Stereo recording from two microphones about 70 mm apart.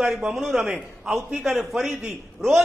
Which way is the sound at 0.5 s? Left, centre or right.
Centre.